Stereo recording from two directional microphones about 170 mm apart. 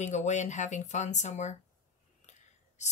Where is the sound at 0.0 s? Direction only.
45° left (ahead or behind).